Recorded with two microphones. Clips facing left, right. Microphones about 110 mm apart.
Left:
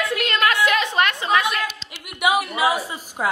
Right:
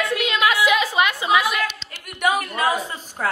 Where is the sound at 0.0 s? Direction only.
Centre (ahead or behind).